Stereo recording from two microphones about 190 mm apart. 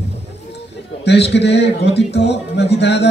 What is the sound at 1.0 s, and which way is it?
A man's voice, 65° left (ahead or behind).